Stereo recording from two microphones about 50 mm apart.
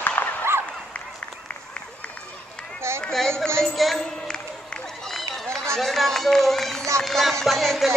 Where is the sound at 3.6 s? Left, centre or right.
Centre.